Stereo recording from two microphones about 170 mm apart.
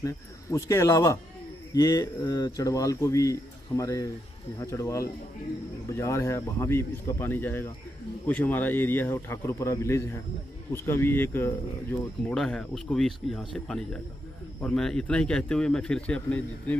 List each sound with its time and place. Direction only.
0.0 s speech: 15° left (ahead or behind)